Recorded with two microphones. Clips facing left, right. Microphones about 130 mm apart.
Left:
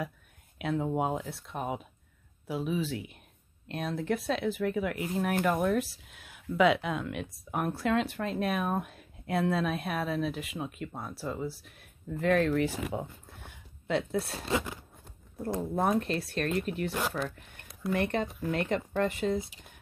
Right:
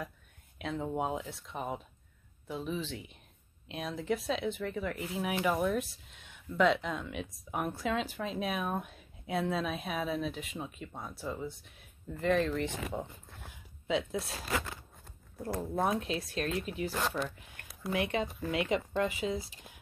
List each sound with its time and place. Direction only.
0.6 s speech: 5° left (ahead or behind)
14.4 s speech: 20° left (ahead or behind)
15.9 s speech: centre (ahead or behind)